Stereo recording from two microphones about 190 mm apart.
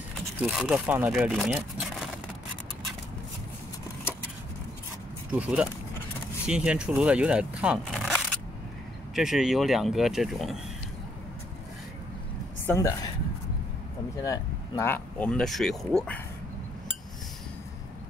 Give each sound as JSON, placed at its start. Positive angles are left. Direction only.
{"t": 0.4, "sound": "speech", "side_deg": -5}
{"t": 5.3, "sound": "speech", "side_deg": -5}
{"t": 12.6, "sound": "speech", "side_deg": 15}
{"t": 14.2, "sound": "speech", "side_deg": 20}